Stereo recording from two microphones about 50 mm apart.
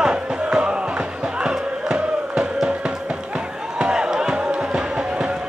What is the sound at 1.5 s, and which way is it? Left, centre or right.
Crowd, centre.